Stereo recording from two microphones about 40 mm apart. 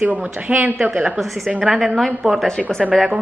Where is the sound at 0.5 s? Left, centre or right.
Right.